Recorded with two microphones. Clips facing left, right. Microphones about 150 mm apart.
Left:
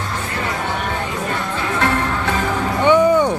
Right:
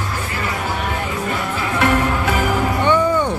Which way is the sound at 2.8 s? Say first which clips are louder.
Left 5 dB; 15° left (ahead or behind).